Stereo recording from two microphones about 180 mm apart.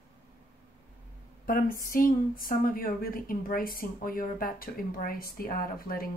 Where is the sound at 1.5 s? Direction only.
50° left (ahead or behind).